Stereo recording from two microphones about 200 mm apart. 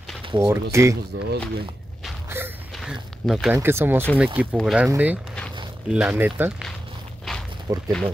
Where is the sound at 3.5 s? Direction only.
10° right (ahead or behind).